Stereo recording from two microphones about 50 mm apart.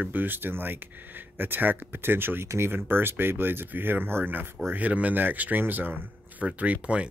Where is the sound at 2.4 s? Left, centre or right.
Right.